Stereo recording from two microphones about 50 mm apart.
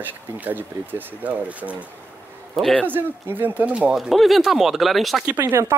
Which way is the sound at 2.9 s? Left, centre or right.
Right.